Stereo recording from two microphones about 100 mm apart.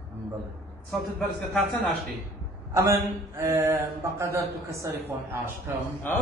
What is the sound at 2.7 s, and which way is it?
A man's voice, 30° right (ahead or behind).